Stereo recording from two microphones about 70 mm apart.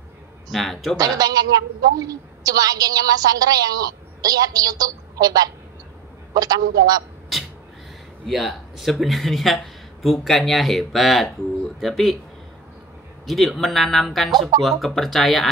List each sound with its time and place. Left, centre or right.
0.5 s speech: centre
0.9 s a woman's voice: right
8.3 s speech: centre
13.3 s speech: centre